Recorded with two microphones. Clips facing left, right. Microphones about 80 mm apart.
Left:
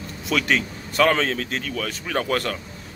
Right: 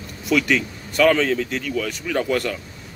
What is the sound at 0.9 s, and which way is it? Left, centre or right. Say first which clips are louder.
A man's voice: right 3 dB; left.